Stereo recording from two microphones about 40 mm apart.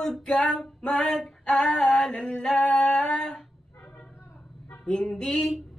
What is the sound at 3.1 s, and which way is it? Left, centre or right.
Music, centre.